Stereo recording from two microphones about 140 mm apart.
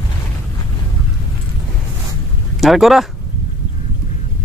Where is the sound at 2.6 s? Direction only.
Centre (ahead or behind).